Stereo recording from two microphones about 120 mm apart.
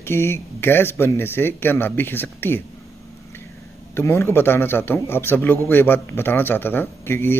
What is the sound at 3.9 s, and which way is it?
A man's voice, 20° left (ahead or behind).